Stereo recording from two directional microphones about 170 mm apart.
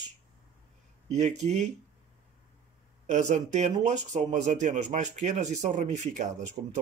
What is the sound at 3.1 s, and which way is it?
Speech, 45° right (ahead or behind).